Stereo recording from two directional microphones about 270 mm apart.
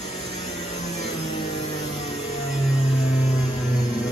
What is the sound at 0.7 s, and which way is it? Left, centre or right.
Music, left.